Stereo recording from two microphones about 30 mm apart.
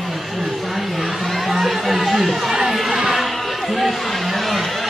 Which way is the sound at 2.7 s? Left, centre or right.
Centre.